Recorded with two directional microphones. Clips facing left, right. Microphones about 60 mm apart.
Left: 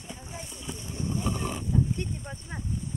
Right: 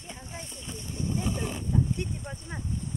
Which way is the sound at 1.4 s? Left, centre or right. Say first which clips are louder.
Left 1 dB; centre.